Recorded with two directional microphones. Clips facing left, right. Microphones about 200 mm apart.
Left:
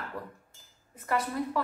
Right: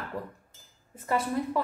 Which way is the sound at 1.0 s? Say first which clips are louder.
Right 2 dB; 25° right (ahead or behind).